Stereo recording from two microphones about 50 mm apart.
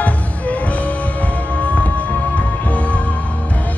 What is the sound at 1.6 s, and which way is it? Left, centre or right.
Music, left.